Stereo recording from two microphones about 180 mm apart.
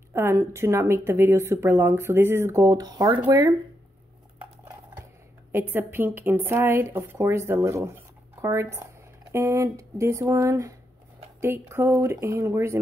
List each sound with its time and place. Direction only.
0.1 s speech: 15° right (ahead or behind)
5.5 s speech: 10° right (ahead or behind)